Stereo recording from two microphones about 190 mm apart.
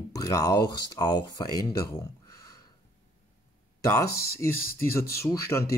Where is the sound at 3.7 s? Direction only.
15° left (ahead or behind).